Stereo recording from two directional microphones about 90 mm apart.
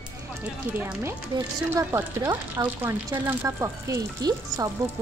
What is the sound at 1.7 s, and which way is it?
Speech, 25° right (ahead or behind).